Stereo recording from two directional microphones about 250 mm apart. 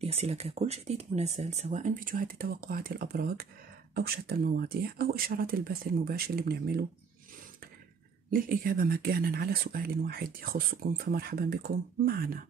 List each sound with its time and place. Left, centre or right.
0.0 s speech: right
8.3 s speech: right